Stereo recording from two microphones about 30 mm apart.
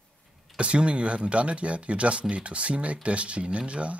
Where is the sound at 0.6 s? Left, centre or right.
Right.